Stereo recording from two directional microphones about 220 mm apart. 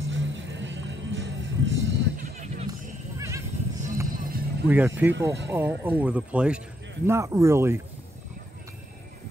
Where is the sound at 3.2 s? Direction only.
15° right (ahead or behind).